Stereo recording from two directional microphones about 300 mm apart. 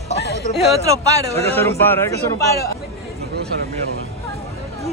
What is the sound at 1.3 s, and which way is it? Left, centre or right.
Speech, centre.